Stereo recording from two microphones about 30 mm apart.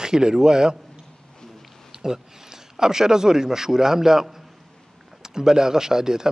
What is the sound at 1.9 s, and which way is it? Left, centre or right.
Speech, centre.